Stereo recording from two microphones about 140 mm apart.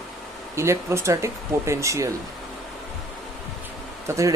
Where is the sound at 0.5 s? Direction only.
20° right (ahead or behind).